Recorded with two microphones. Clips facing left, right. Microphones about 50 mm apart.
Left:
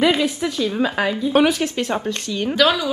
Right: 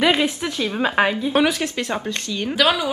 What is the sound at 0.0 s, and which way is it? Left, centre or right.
Speech, right.